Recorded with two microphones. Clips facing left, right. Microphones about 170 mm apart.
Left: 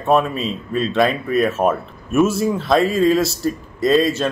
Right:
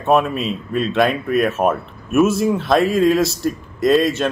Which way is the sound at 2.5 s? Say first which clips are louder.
Right 1 dB; centre (ahead or behind).